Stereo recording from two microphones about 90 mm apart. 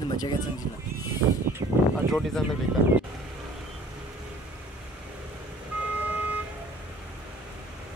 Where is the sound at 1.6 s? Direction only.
85° right.